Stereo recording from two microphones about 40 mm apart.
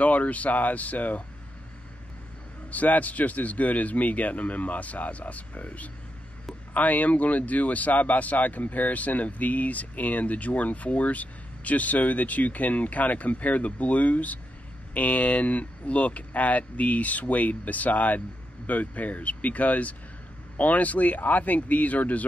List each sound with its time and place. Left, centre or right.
0.0 s speech: left
2.7 s speech: left